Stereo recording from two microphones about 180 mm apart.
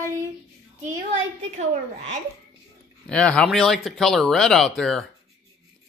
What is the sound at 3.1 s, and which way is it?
Speech, 5° left (ahead or behind).